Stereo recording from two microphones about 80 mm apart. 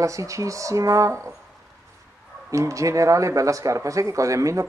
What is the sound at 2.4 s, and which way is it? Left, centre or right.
Speech, right.